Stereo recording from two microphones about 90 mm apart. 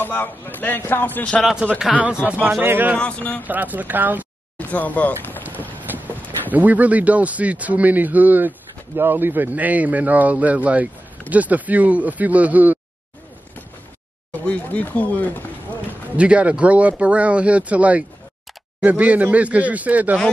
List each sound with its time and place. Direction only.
0.0 s a man's voice: 20° left (ahead or behind)
1.4 s a man's voice: 10° right (ahead or behind)
2.6 s speech: 20° right (ahead or behind)
3.0 s speech: 15° left (ahead or behind)
3.4 s speech: 20° right (ahead or behind)
4.6 s speech: 20° left (ahead or behind)
6.5 s a man's voice: 15° right (ahead or behind)
14.4 s speech: 15° left (ahead or behind)
16.2 s a man's voice: 15° right (ahead or behind)